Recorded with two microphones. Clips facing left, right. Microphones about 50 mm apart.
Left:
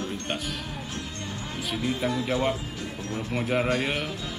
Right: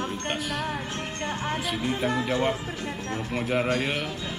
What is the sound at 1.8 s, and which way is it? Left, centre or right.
Speech, right.